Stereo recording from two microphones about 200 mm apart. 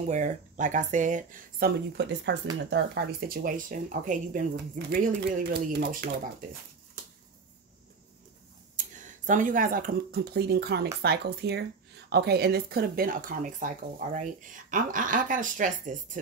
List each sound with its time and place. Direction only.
0.0 s speech: 35° right (ahead or behind)
1.9 s speech: 60° right (ahead or behind)
8.7 s speech: 40° right (ahead or behind)